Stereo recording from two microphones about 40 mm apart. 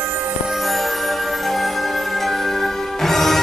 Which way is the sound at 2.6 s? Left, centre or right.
Centre.